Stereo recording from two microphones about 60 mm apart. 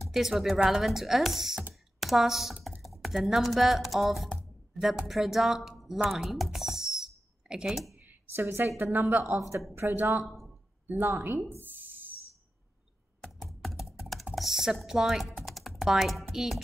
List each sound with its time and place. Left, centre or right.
0.0 s speech: centre
1.7 s computer keyboard: centre
2.8 s a woman's voice: centre
8.0 s a sound: right
8.5 s a woman's voice: right
10.2 s a sound: centre
10.9 s a woman's voice: right
11.6 s a sound: right
13.2 s computer keyboard: centre
13.7 s computer keyboard: centre
14.3 s speech: centre
15.4 s typing: centre